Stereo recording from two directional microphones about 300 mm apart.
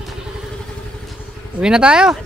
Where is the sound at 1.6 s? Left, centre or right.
Centre.